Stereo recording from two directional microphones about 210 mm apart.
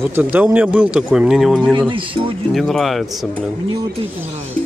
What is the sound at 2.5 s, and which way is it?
Speech, centre (ahead or behind).